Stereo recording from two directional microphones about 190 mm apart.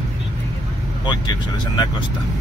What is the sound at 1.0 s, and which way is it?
Speech, 25° left (ahead or behind).